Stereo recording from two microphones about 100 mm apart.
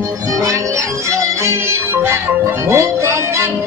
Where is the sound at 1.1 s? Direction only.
30° right (ahead or behind).